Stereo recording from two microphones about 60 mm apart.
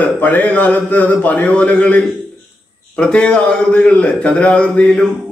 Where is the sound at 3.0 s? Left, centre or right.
Centre.